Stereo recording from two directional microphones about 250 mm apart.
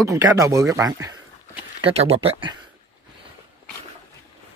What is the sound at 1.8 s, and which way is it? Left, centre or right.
Speech, right.